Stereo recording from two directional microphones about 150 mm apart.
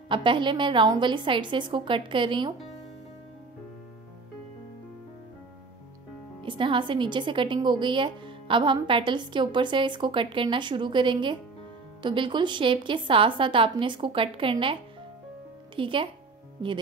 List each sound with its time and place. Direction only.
0.1 s a woman's voice: 35° right (ahead or behind)
6.4 s a woman's voice: 35° right (ahead or behind)